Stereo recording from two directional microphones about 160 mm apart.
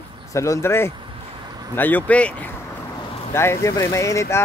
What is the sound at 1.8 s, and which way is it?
Speech, 10° left (ahead or behind).